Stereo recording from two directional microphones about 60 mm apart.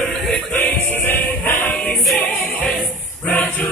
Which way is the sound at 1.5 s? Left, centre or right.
Left.